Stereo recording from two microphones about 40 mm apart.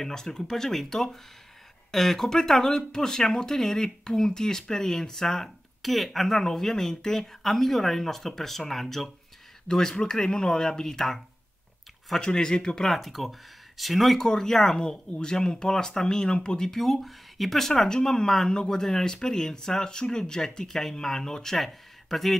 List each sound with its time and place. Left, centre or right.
0.0 s speech: centre
12.2 s speech: centre
12.8 s speech: centre
14.2 s speech: centre